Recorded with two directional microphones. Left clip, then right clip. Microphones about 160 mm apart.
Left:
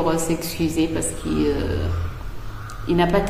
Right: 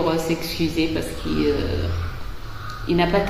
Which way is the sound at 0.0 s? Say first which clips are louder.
Even; 15° left (ahead or behind).